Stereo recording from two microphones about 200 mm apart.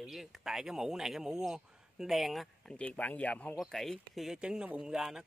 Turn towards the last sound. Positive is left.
turn(degrees=0)  # may be behind; listen again after turning